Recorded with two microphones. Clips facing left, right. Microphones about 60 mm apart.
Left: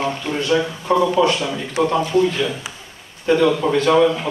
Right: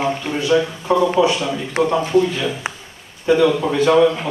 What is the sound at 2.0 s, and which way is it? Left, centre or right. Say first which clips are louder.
Speech: right 2 dB; right.